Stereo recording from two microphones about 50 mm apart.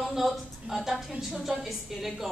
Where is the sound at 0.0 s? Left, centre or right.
Centre.